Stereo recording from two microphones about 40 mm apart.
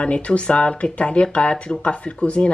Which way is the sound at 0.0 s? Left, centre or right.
Left.